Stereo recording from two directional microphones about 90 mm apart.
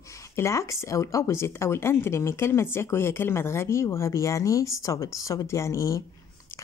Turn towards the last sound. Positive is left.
turn(degrees=35)  # may be behind; listen again after turning